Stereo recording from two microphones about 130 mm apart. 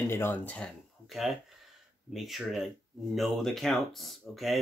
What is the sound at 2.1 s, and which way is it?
Speech, centre (ahead or behind).